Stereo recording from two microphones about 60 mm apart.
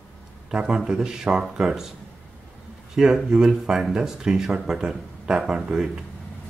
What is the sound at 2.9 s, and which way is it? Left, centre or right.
Speech, centre.